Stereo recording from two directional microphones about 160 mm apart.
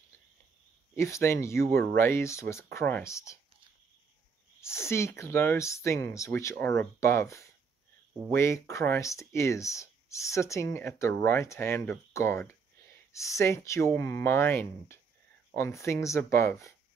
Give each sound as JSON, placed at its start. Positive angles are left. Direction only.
{"t": 0.9, "sound": "speech", "side_deg": 15}
{"t": 4.6, "sound": "speech", "side_deg": 15}